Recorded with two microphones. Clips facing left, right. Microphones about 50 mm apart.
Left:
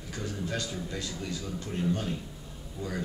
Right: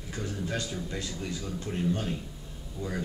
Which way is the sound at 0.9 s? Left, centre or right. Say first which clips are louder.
Even; centre.